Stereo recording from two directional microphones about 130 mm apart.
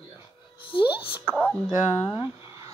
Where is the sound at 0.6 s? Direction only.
40° left (ahead or behind).